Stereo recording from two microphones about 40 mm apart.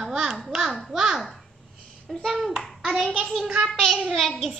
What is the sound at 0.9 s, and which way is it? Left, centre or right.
Babbling, centre.